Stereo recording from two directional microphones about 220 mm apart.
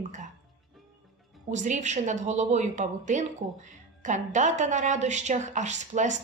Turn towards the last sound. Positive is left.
turn(degrees=-35)  # may be behind; listen again after turning